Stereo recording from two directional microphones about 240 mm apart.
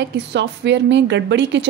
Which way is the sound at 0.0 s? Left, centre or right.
Right.